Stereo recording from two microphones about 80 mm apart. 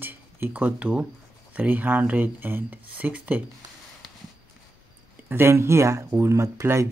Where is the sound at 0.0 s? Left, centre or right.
Right.